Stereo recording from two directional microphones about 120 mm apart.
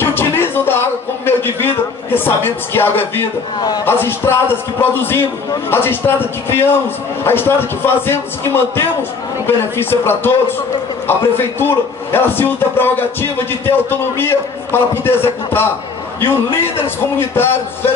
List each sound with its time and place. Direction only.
0.0 s music: 20° left (ahead or behind)
3.8 s a man's voice: 20° left (ahead or behind)